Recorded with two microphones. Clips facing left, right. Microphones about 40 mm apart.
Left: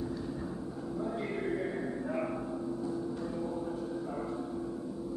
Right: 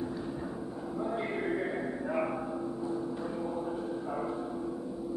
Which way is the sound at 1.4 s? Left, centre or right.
Centre.